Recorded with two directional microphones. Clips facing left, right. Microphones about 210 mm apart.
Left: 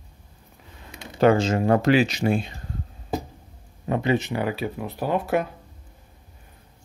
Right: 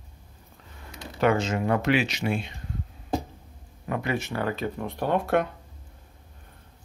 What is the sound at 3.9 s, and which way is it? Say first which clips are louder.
Speech: left 6 dB; 25° left (ahead or behind).